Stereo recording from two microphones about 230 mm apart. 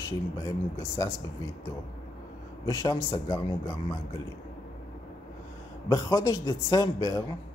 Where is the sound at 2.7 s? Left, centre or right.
Centre.